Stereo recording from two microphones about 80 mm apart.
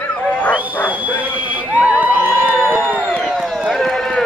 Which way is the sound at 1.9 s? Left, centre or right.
Right.